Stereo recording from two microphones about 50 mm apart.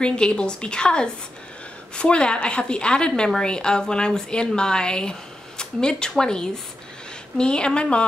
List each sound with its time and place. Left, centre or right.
0.0 s a woman's voice: centre